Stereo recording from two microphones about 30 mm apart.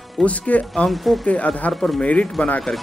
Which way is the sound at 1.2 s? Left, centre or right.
Left.